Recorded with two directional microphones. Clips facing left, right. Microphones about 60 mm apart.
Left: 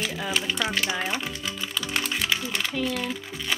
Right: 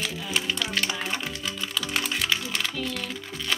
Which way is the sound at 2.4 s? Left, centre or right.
Centre.